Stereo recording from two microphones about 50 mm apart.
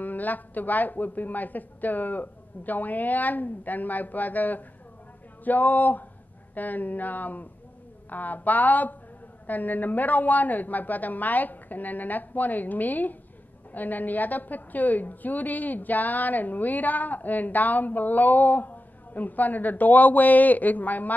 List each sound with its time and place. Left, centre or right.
0.0 s a woman's voice: left